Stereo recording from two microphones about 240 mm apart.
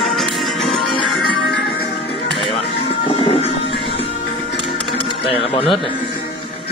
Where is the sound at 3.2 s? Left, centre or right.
Left.